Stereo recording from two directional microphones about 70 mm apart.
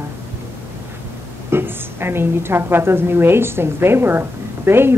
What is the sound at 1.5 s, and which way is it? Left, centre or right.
A woman's voice, right.